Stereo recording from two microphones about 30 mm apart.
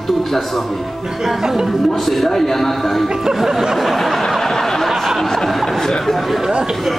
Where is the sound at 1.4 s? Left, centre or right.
Centre.